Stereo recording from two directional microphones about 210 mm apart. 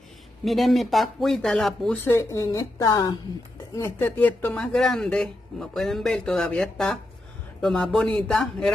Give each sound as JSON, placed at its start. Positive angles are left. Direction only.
{"t": 0.5, "sound": "speech", "side_deg": 0}
{"t": 2.1, "sound": "a woman's voice", "side_deg": 15}